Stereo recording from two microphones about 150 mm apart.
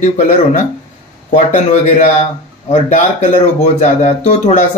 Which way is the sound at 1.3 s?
55° left (ahead or behind).